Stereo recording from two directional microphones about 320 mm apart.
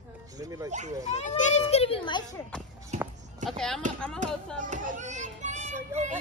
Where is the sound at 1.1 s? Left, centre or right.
Left.